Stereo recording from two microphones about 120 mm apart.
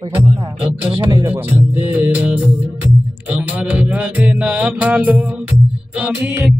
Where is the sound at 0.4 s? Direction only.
50° right (ahead or behind).